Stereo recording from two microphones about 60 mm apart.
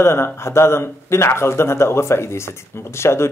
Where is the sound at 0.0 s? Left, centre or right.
Left.